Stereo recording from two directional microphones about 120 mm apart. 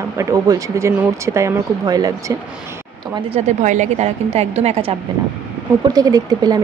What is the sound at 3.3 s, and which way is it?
A woman's voice, 85° right.